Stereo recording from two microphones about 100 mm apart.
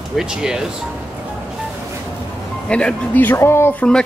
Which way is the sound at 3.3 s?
25° left (ahead or behind).